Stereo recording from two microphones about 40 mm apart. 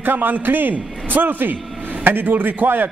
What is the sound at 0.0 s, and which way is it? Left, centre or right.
A man's voice, right.